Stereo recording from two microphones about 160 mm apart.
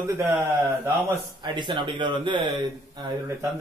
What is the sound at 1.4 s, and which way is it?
Speech, 30° right (ahead or behind).